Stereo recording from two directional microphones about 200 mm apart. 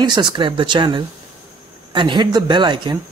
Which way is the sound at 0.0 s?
20° right (ahead or behind).